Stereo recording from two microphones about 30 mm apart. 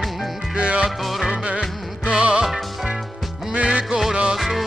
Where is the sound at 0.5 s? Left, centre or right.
Right.